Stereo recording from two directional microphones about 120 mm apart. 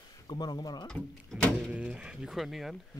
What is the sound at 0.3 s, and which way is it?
Speech, 35° left (ahead or behind).